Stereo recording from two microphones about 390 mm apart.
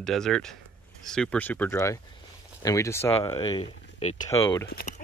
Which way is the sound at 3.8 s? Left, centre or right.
Left.